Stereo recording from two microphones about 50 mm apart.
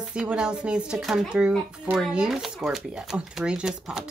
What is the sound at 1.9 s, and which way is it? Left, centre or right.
Speech, right.